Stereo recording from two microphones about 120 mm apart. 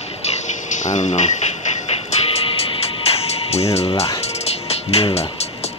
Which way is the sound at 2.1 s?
60° left (ahead or behind).